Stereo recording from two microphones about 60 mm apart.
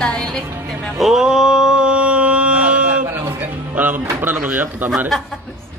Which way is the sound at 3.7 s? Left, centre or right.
Right.